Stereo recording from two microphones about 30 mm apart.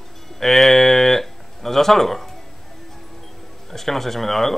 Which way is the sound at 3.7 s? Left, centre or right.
Centre.